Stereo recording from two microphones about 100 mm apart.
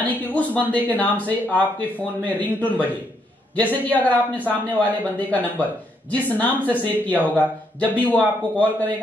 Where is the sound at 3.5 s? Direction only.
15° left (ahead or behind).